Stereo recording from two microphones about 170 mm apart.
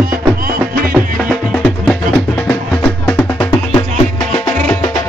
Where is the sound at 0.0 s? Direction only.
60° right (ahead or behind).